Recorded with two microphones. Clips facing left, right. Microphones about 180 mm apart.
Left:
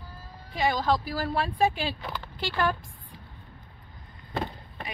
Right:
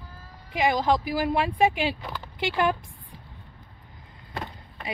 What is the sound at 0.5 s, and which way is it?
Speech, 20° right (ahead or behind).